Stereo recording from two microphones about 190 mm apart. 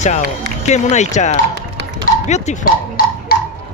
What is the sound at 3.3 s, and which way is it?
Tick-tock, 55° left (ahead or behind).